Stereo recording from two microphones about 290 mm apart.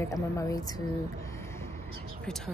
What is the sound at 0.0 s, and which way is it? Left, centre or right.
Speech, centre.